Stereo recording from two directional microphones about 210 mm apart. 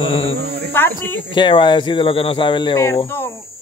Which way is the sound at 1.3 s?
25° left (ahead or behind).